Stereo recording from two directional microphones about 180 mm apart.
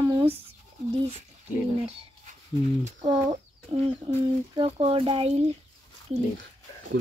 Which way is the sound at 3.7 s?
30° right (ahead or behind).